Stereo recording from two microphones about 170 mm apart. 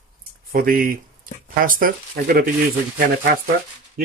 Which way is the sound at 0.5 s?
55° right (ahead or behind).